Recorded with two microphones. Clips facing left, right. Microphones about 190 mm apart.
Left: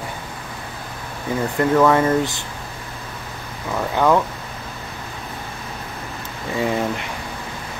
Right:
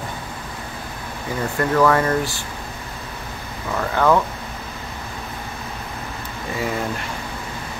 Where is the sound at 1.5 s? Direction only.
20° left (ahead or behind).